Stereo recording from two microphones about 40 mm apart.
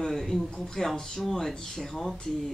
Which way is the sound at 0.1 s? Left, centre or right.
Centre.